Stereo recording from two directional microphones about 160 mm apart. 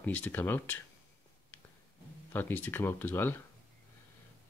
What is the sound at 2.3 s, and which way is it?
Speech, 10° left (ahead or behind).